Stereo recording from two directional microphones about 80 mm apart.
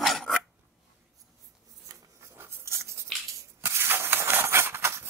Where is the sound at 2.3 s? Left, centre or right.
Right.